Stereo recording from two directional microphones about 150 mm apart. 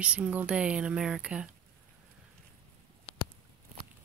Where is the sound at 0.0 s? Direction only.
10° right (ahead or behind).